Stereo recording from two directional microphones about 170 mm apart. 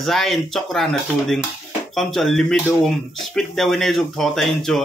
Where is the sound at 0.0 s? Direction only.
Centre (ahead or behind).